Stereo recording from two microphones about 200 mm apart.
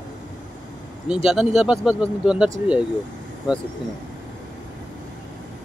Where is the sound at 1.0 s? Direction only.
5° right (ahead or behind).